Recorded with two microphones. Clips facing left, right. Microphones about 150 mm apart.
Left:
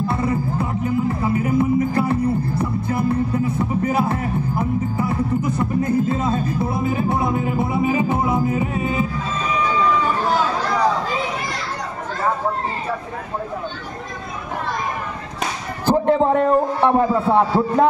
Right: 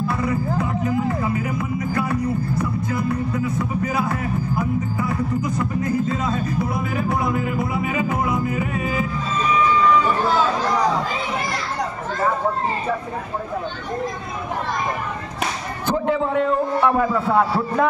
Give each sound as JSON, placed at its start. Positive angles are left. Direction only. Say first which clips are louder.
{"t": 0.1, "sound": "music", "louder": "left 1 dB", "side_deg": 30}
{"t": 3.1, "sound": "speech", "louder": "left 3 dB", "side_deg": 30}
{"t": 16.1, "sound": "a man's voice", "louder": "left 4 dB", "side_deg": 45}